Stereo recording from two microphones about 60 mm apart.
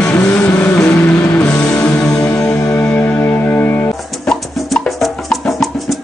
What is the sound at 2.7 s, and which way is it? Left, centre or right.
Music, left.